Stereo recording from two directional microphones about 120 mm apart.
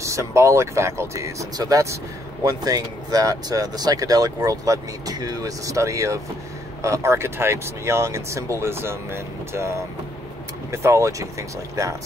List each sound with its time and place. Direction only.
0.0 s speech: 25° right (ahead or behind)